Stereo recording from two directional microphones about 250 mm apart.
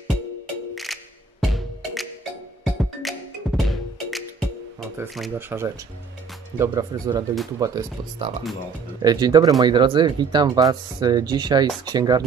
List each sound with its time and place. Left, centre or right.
1.4 s music: centre
4.9 s speech: centre
6.6 s speech: centre